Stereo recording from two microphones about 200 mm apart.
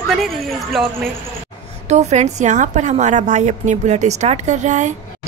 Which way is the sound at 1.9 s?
35° right (ahead or behind).